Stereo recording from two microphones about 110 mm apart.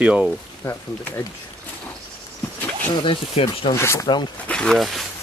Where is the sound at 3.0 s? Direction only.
55° left (ahead or behind).